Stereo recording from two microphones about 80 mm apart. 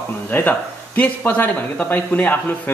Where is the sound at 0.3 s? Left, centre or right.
Left.